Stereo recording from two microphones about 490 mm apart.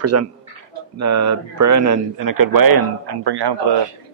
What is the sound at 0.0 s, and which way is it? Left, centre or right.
A man's voice, right.